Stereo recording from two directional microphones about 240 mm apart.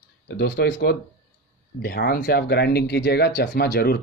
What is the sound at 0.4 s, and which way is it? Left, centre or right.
Speech, left.